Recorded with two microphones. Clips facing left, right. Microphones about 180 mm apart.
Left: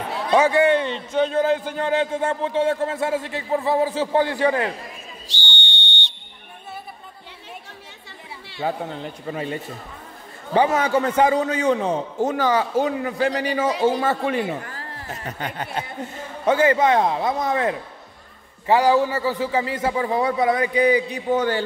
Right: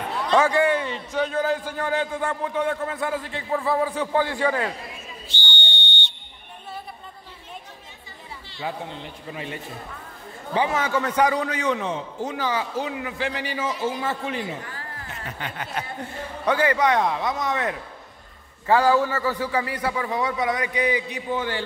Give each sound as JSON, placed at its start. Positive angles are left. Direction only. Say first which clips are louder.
{"t": 0.3, "sound": "a man's voice", "louder": "left 3 dB", "side_deg": 20}
{"t": 8.6, "sound": "a man's voice", "louder": "left 5 dB", "side_deg": 40}
{"t": 12.2, "sound": "a man's voice", "louder": "left 7 dB", "side_deg": 50}
{"t": 13.7, "sound": "a man's voice", "louder": "left 6 dB", "side_deg": 75}
{"t": 14.7, "sound": "a man's voice", "louder": "left 3 dB", "side_deg": 40}
{"t": 18.7, "sound": "a man's voice", "louder": "left 2 dB", "side_deg": 15}